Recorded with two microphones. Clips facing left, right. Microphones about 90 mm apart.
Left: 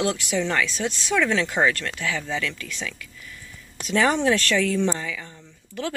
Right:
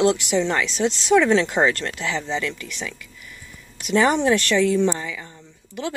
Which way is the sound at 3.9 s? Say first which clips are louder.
Right 2 dB; 20° right (ahead or behind).